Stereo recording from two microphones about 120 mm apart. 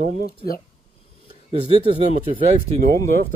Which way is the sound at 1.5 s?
55° right (ahead or behind).